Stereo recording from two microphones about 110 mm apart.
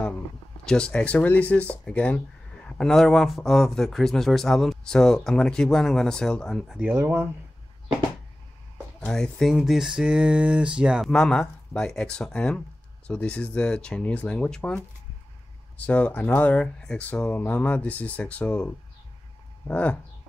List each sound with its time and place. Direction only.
0.7 s speech: 10° left (ahead or behind)
7.0 s speech: 25° right (ahead or behind)
9.0 s speech: 5° left (ahead or behind)
11.1 s speech: 5° left (ahead or behind)
15.8 s speech: 15° left (ahead or behind)